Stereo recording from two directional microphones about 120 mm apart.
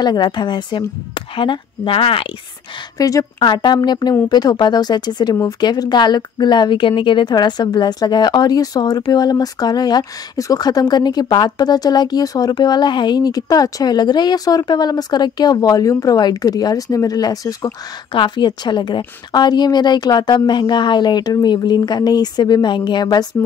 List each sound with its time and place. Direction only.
0.0 s a woman's voice: 35° left (ahead or behind)
3.0 s speech: 30° left (ahead or behind)
18.1 s speech: 40° left (ahead or behind)